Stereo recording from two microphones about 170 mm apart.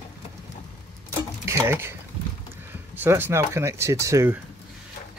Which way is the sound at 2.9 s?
15° right (ahead or behind).